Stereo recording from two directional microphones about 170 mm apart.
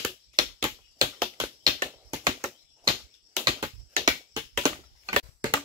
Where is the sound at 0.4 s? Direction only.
25° right (ahead or behind).